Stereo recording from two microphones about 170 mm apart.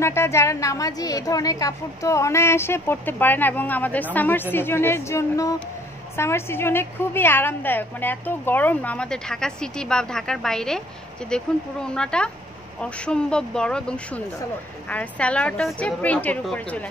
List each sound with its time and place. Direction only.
0.0 s a woman's voice: 15° left (ahead or behind)